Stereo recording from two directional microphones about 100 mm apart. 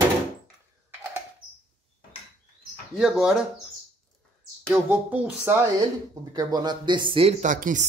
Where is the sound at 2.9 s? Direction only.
5° right (ahead or behind).